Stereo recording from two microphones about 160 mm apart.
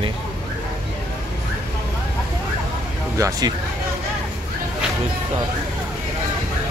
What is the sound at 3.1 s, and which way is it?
Speech, 20° right (ahead or behind).